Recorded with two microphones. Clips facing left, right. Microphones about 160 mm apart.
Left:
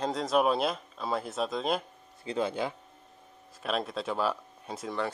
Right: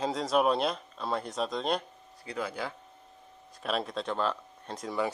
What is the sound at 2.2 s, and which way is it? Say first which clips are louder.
Speech: left 5 dB; 25° left (ahead or behind).